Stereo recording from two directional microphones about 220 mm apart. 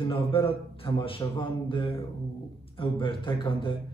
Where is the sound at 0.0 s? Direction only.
25° left (ahead or behind).